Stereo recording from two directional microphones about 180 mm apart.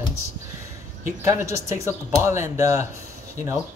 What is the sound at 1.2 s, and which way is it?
Speech, 15° right (ahead or behind).